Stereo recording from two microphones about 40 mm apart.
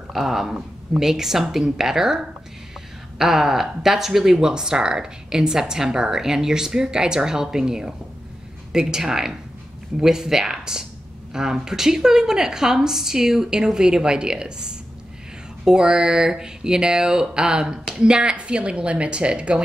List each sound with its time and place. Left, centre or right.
0.1 s speech: centre; by 19.6 s right